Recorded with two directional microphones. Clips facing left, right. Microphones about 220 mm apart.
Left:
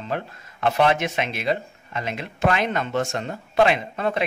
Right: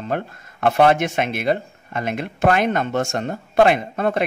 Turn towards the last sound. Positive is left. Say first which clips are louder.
# right 4 dB
turn(degrees=-50)  # may be behind; listen again after turning